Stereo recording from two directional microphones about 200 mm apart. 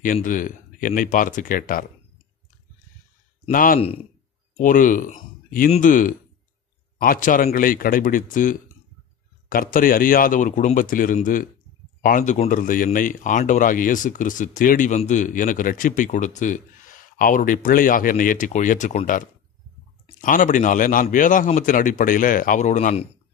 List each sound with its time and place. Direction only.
0.0 s speech: 40° left (ahead or behind)
3.5 s speech: 45° left (ahead or behind)